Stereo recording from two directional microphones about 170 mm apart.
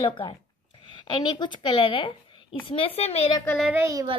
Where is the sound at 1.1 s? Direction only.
25° left (ahead or behind).